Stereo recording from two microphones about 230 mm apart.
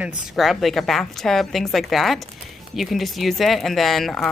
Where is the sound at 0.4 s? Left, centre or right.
Centre.